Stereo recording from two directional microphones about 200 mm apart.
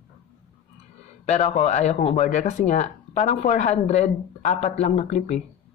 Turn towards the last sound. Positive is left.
turn(degrees=35)  # may be behind; listen again after turning